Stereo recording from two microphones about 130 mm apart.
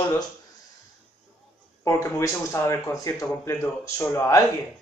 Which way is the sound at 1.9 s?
20° left (ahead or behind).